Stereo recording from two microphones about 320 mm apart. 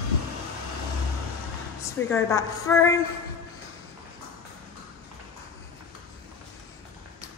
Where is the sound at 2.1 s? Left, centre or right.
Centre.